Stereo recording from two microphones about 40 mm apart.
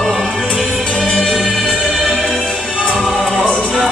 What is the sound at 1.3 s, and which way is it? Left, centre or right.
Music, centre.